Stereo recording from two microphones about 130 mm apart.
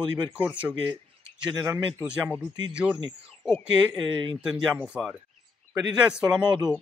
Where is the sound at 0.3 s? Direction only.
10° right (ahead or behind).